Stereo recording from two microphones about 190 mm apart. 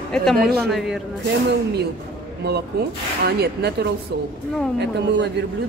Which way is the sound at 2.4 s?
60° right (ahead or behind).